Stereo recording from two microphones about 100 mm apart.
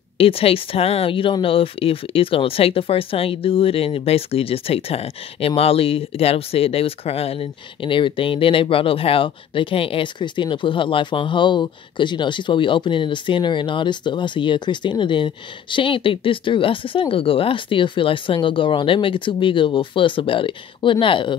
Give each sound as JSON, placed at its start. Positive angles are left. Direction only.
{"t": 0.2, "sound": "speech", "side_deg": 70}